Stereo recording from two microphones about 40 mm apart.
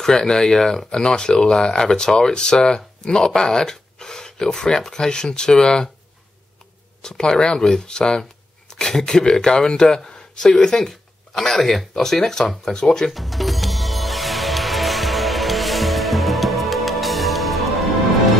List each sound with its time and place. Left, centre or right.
0.0 s speech: centre
7.0 s speech: centre
13.1 s music: centre